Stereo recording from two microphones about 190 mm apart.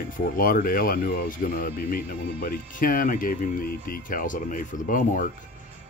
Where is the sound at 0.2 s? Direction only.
50° left (ahead or behind).